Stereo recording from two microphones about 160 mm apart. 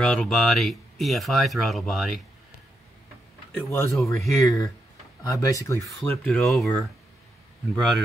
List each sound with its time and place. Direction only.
0.0 s speech: 5° left (ahead or behind)
3.5 s speech: 5° left (ahead or behind)
4.4 s speech: 20° left (ahead or behind)
5.9 s speech: 5° left (ahead or behind)